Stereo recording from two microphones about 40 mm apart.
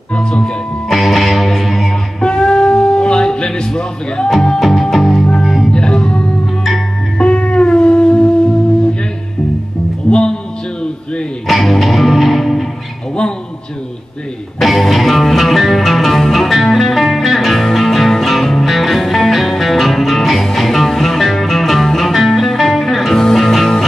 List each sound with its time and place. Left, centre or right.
0.1 s speech: left
0.8 s music: centre
2.1 s music: left
4.3 s music: centre
5.7 s music: left
10.1 s music: centre
11.4 s music: centre
14.6 s music: centre